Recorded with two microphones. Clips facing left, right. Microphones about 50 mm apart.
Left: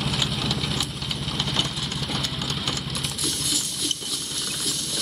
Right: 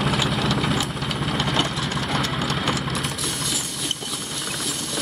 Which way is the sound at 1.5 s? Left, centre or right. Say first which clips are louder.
Right 5 dB; centre.